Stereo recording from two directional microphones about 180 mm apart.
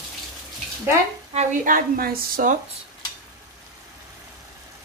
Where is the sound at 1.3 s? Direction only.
50° right (ahead or behind).